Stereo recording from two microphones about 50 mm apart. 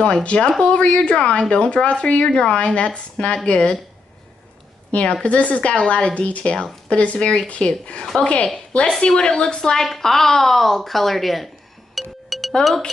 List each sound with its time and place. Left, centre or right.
0.0 s speech: left
4.9 s speech: left; by 12.9 s centre